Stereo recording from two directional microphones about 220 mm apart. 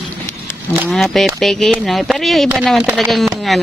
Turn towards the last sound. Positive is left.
turn(degrees=0)  # may be behind; listen again after turning